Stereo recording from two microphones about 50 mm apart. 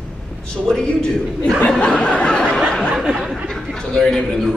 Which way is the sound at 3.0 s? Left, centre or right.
Centre.